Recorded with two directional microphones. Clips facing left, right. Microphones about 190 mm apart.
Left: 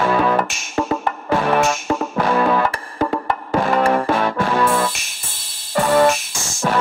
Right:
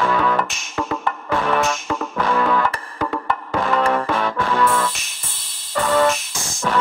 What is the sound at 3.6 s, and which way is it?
Music, 10° left (ahead or behind).